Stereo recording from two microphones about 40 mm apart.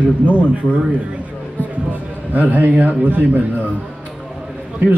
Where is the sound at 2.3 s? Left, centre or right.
Right.